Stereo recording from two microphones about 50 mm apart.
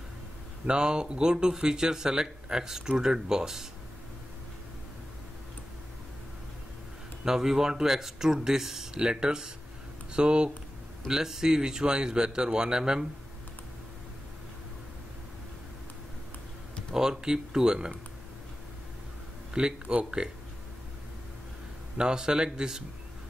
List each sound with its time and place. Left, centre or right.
0.7 s speech: centre
7.2 s speech: centre
16.9 s speech: centre
19.5 s speech: centre
21.9 s speech: centre